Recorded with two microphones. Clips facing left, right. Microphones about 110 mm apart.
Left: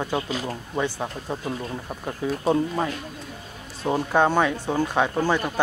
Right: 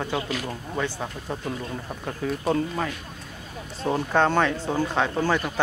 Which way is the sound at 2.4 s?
20° left (ahead or behind).